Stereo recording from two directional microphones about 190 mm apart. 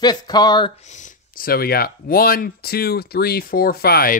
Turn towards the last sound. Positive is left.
turn(degrees=55)  # may be behind; listen again after turning